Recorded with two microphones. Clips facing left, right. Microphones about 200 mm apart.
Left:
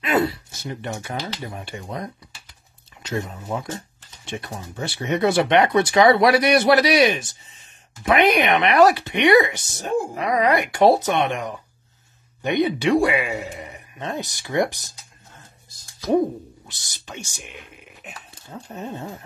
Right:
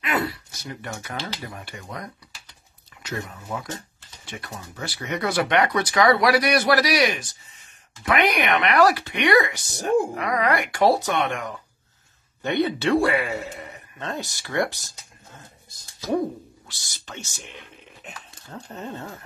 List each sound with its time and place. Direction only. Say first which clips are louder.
0.0 s a sound: left 5 dB; 25° left (ahead or behind)
1.4 s a man's voice: left 4 dB; 25° left (ahead or behind)
16.1 s speech: left 5 dB; 20° left (ahead or behind)